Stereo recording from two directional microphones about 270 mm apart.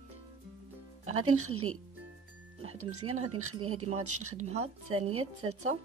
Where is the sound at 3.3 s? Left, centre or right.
Right.